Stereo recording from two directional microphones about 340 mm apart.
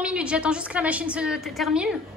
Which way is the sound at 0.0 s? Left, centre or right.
Centre.